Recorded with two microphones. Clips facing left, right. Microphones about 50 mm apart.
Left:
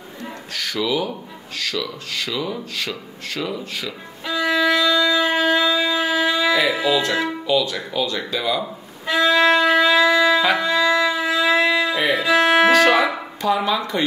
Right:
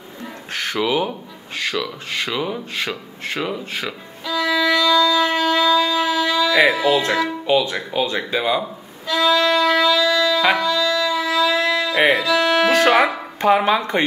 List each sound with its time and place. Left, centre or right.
0.5 s a sound: right
1.6 s speech: right
4.2 s wind instrument: left
6.5 s speech: right
9.0 s violin: left
11.9 s speech: right
12.2 s music: left
12.7 s speech: right